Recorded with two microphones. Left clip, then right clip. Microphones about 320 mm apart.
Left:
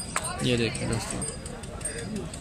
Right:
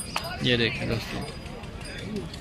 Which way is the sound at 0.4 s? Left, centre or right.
Centre.